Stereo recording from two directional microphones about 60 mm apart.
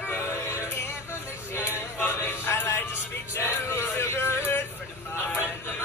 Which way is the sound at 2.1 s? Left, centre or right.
Left.